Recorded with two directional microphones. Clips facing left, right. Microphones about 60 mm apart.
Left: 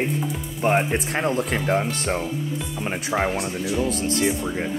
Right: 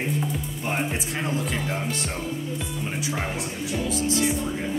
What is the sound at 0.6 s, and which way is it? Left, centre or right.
Speech, left.